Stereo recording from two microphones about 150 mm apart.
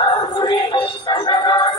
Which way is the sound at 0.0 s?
30° left (ahead or behind).